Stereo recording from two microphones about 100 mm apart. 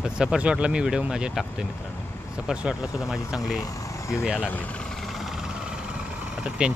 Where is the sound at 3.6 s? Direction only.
30° left (ahead or behind).